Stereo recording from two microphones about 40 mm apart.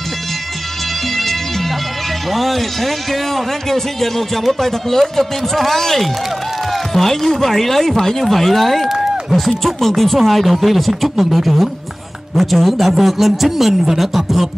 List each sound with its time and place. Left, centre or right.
2.3 s a man's voice: centre
8.8 s run: centre
9.6 s a man's voice: centre